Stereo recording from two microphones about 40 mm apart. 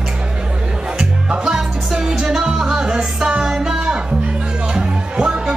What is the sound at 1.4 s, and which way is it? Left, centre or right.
Music, centre.